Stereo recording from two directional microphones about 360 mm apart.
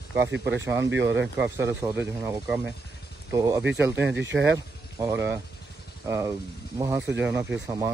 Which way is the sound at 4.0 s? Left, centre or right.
Right.